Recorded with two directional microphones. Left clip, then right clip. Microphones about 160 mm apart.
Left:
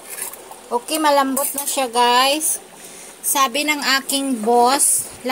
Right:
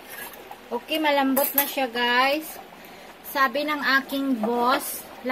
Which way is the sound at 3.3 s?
45° left (ahead or behind).